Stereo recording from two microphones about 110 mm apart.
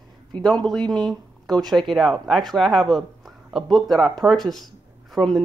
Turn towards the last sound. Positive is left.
turn(degrees=0)  # may be behind; listen again after turning